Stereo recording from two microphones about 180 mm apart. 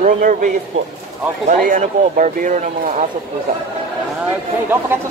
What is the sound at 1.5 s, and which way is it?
Speech, 50° right (ahead or behind).